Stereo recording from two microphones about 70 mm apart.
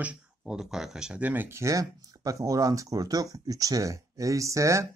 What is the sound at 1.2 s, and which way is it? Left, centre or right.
Speech, right.